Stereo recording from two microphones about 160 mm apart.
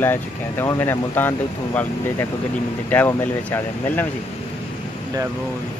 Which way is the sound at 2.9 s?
15° left (ahead or behind).